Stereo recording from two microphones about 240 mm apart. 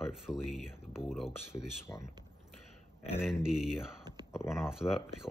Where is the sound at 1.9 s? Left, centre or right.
Centre.